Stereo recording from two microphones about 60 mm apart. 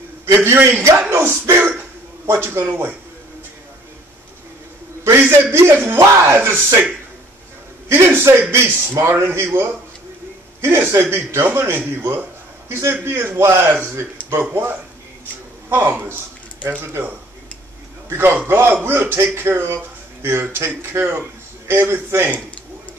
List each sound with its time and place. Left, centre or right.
0.3 s a man's voice: right
5.0 s a man's voice: right
7.9 s a man's voice: right
14.5 s a man's voice: right
18.1 s a man's voice: right